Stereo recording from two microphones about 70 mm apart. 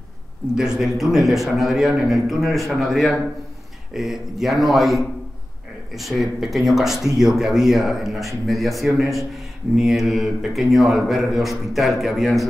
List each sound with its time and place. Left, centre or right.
0.6 s speech: centre